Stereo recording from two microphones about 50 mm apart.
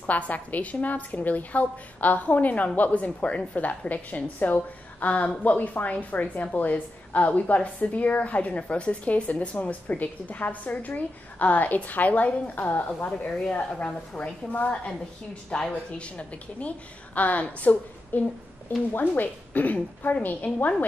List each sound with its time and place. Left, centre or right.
0.0 s a woman's voice: left
13.3 s a woman's voice: left